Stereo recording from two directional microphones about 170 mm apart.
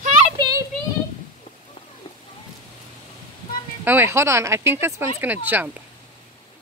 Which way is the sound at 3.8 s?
15° right (ahead or behind).